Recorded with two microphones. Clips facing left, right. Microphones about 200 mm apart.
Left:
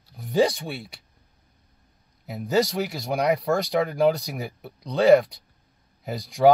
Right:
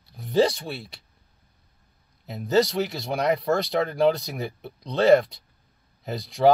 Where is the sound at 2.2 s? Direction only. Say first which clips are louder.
Right 1 dB; 5° left (ahead or behind).